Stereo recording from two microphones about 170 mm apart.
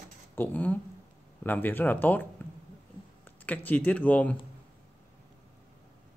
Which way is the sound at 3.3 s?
10° left (ahead or behind).